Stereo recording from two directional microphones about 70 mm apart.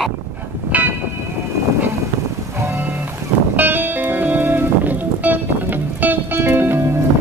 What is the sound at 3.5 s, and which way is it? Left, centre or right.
Music, right.